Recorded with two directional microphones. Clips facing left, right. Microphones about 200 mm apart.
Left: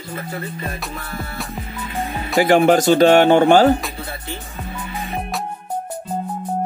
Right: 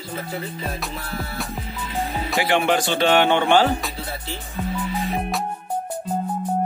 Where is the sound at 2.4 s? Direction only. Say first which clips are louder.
Left 8 dB; 45° left (ahead or behind).